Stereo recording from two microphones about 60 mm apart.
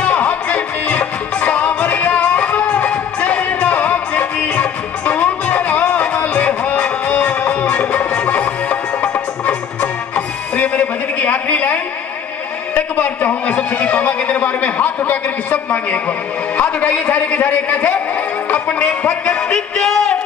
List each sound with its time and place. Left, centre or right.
0.0 s music: left
12.7 s a man's voice: left
18.5 s music: left
19.2 s music: centre